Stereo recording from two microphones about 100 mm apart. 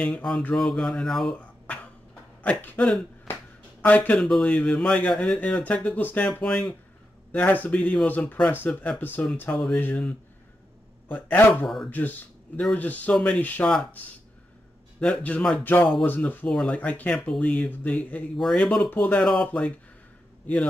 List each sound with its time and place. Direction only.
0.0 s speech: 10° left (ahead or behind)
1.3 s a sound: 15° left (ahead or behind)
2.4 s speech: 15° left (ahead or behind)
5.4 s speech: 15° left (ahead or behind)
11.6 s speech: 5° left (ahead or behind)
11.9 s speech: 20° left (ahead or behind)
15.0 s speech: 15° left (ahead or behind)
16.4 s speech: 10° left (ahead or behind)